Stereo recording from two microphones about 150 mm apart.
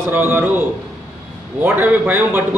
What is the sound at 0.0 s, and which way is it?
Speech, 15° right (ahead or behind).